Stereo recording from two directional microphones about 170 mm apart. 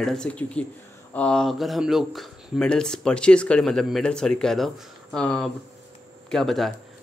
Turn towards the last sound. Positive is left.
turn(degrees=0)  # may be behind; listen again after turning